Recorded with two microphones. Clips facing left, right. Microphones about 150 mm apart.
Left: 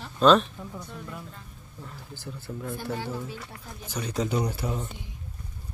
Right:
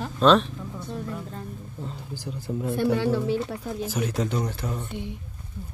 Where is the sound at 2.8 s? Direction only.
70° right (ahead or behind).